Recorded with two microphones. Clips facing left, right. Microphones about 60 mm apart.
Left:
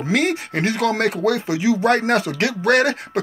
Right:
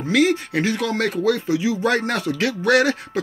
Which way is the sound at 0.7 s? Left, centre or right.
Left.